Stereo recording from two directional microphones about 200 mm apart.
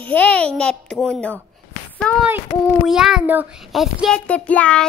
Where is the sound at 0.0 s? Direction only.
5° left (ahead or behind).